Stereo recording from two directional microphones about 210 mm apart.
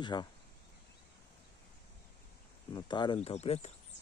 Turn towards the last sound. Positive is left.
turn(degrees=30)  # may be behind; listen again after turning